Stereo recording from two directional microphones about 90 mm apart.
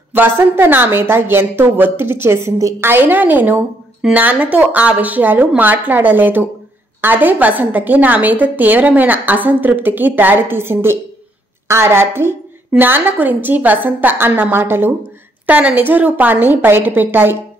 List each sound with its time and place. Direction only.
0.1 s a woman's voice: 25° right (ahead or behind)